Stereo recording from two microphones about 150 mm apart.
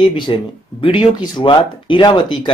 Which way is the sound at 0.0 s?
35° left (ahead or behind).